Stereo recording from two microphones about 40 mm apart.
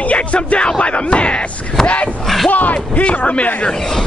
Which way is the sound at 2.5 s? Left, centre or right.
Left.